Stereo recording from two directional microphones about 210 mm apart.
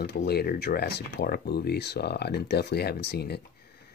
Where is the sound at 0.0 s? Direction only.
50° left (ahead or behind).